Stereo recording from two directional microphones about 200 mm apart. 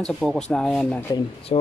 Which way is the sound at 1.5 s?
30° left (ahead or behind).